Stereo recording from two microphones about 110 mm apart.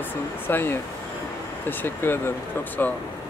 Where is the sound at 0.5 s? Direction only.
20° left (ahead or behind).